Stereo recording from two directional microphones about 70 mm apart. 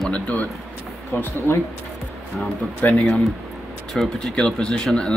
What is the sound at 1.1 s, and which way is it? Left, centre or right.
Speech, left.